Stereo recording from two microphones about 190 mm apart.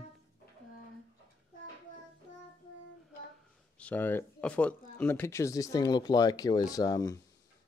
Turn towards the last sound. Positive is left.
turn(degrees=20)  # may be behind; listen again after turning